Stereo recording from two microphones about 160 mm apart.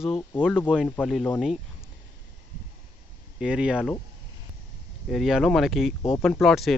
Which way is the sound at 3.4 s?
5° right (ahead or behind).